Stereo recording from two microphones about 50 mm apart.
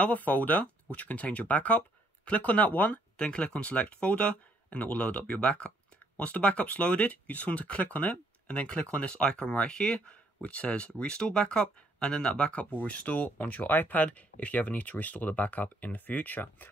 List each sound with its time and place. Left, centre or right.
0.0 s speech: left